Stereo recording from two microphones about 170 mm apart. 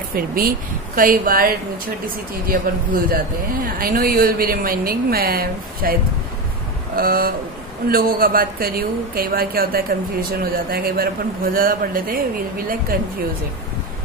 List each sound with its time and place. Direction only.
0.1 s speech: 60° right (ahead or behind)
7.0 s speech: 60° right (ahead or behind)